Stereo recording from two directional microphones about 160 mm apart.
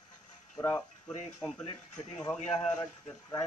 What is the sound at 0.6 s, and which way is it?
Speech, 15° left (ahead or behind).